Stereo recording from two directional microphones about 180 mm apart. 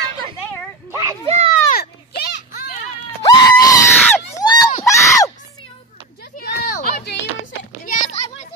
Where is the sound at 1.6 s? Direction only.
60° left (ahead or behind).